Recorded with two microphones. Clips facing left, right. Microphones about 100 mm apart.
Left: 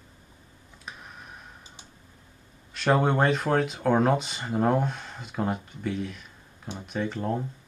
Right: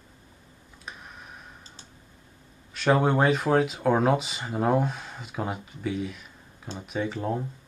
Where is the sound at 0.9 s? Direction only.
Centre (ahead or behind).